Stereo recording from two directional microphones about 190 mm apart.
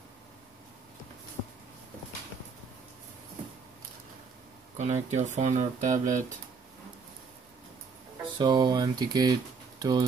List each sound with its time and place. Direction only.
4.7 s speech: 35° right (ahead or behind)
8.4 s speech: 20° right (ahead or behind)